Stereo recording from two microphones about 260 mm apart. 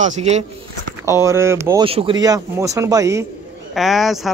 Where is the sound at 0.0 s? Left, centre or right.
Right.